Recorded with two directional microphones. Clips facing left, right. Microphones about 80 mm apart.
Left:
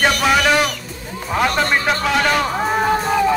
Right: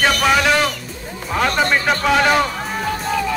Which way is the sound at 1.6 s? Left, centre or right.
Centre.